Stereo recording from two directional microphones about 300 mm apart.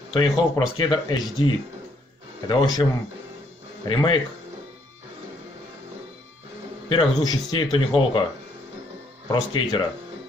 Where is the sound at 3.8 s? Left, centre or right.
Centre.